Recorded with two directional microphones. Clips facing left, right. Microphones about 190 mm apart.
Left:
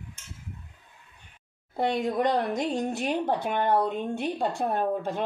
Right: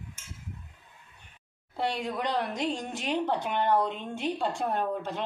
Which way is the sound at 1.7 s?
45° left (ahead or behind).